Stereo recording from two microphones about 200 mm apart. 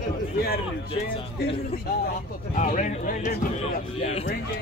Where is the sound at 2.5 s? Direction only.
40° left (ahead or behind).